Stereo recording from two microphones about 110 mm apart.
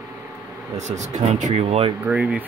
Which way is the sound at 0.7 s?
90° right.